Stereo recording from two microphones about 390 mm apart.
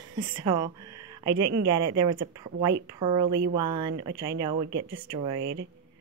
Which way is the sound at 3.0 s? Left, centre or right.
Centre.